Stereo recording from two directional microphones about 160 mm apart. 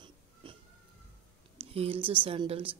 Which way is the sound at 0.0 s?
30° right (ahead or behind).